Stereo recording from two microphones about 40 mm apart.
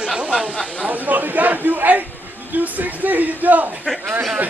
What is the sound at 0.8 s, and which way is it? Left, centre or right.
A man's voice, right.